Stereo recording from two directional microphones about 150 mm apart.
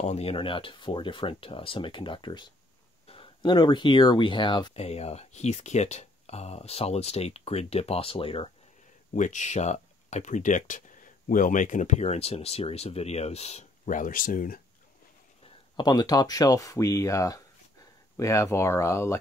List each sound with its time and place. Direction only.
0.0 s speech: 45° left (ahead or behind)
4.7 s speech: 45° left (ahead or behind)
9.1 s speech: 55° left (ahead or behind)
15.4 s speech: 30° left (ahead or behind)